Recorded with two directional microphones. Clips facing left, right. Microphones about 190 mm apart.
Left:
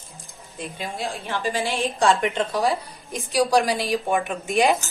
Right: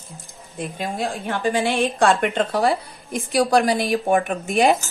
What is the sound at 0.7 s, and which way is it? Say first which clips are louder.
A woman's voice: right 4 dB; 55° right (ahead or behind).